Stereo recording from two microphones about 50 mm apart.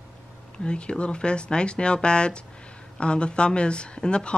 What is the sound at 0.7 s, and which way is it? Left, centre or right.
Speech, left.